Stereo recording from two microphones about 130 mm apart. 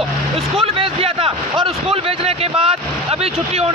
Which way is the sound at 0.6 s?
50° right (ahead or behind).